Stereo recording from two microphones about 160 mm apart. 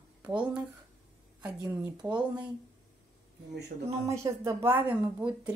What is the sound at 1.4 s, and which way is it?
Speech, 10° right (ahead or behind).